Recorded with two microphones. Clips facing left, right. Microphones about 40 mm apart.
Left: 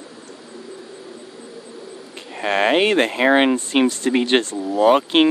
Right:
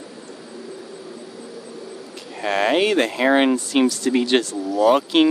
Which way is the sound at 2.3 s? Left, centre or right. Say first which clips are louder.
Left 2 dB; left.